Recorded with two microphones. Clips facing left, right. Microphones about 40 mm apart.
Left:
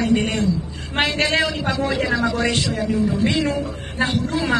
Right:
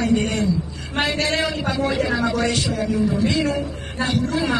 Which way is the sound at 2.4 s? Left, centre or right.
Left.